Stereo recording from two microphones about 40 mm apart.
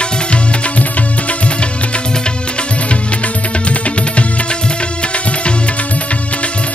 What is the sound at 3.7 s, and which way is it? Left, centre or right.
Music, left.